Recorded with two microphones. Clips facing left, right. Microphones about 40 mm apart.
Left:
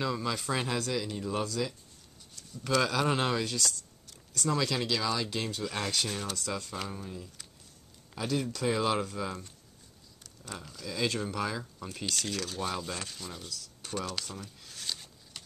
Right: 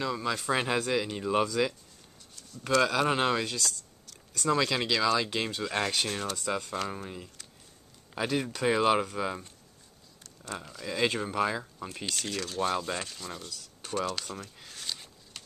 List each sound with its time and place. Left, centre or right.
0.0 s speech: centre
0.5 s speech: right
0.9 s speech: right
2.9 s speech: centre
4.5 s speech: right
5.7 s speech: right
10.6 s speech: centre
10.9 s speech: right
11.9 s speech: centre
14.7 s a sound: centre